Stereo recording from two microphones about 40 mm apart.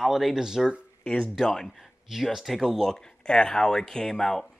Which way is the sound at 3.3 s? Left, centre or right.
Centre.